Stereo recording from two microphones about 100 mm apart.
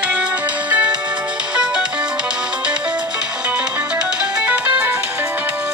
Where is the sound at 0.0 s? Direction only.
10° right (ahead or behind).